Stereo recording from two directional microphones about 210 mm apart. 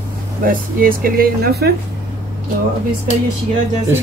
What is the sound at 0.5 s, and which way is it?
Speech, 40° right (ahead or behind).